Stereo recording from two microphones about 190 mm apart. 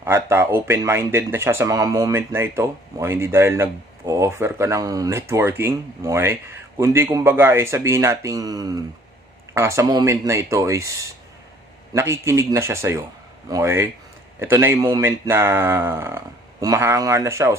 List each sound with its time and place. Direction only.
0.0 s speech: 15° right (ahead or behind)